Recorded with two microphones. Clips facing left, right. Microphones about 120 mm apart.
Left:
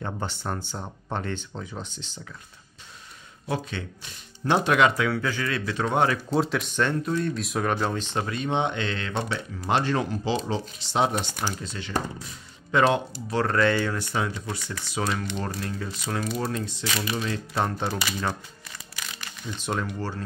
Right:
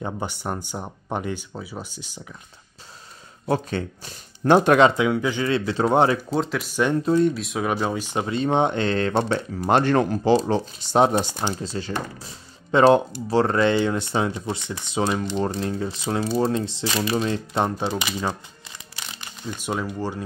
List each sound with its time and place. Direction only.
0.0 s speech: 15° right (ahead or behind)
3.4 s speech: 40° right (ahead or behind)
4.7 s speech: 25° right (ahead or behind)
6.3 s speech: centre (ahead or behind)
7.1 s speech: 25° right (ahead or behind)
7.3 s speech: centre (ahead or behind)
8.5 s speech: 40° right (ahead or behind)
10.8 s speech: 45° right (ahead or behind)
11.3 s speech: 30° right (ahead or behind)
13.3 s speech: 25° right (ahead or behind)
19.0 s crumpling: 25° right (ahead or behind)
19.5 s speech: 10° right (ahead or behind)